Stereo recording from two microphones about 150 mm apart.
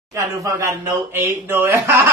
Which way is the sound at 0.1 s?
20° right (ahead or behind).